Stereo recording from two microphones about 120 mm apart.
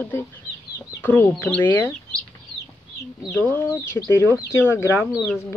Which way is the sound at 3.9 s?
30° left (ahead or behind).